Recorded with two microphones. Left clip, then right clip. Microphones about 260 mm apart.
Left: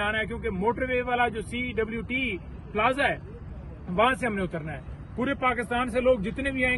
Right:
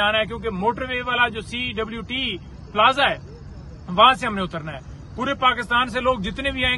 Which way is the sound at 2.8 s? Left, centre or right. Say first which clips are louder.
Right 7 dB; centre.